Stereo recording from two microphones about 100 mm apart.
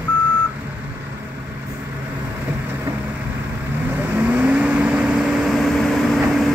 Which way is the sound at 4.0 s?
15° right (ahead or behind).